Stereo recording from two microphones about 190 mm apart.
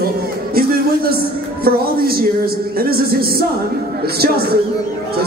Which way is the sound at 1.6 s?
50° right (ahead or behind).